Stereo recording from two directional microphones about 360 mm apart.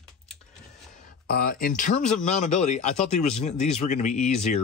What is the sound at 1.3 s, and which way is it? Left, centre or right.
Speech, left.